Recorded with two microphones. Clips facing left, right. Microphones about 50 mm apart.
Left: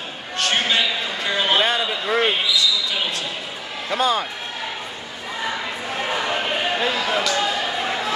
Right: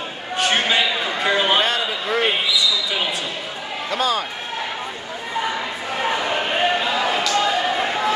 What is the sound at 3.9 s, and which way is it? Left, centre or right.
Speech, left.